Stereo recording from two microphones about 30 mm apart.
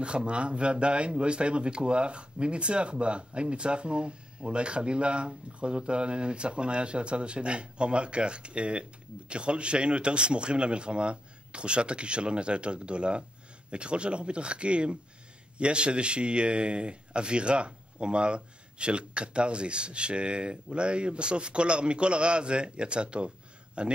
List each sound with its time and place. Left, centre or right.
0.0 s speech: right